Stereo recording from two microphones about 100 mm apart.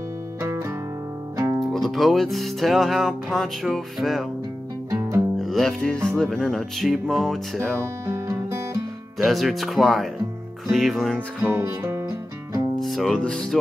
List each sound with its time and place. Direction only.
0.4 s music: 20° right (ahead or behind)
1.7 s music: centre (ahead or behind)
5.4 s music: centre (ahead or behind)
8.1 s music: 30° right (ahead or behind)
9.2 s music: centre (ahead or behind)
11.1 s music: 20° right (ahead or behind)
12.8 s speech: centre (ahead or behind)